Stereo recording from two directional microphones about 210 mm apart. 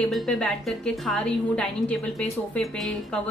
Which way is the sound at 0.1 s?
Centre (ahead or behind).